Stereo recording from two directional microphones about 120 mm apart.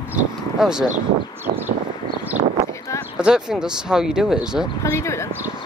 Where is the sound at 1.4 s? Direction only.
15° right (ahead or behind).